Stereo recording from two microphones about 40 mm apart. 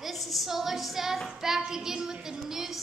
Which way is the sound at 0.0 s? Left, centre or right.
Centre.